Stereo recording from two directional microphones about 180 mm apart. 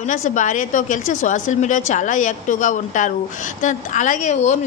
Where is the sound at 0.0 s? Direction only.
45° left (ahead or behind).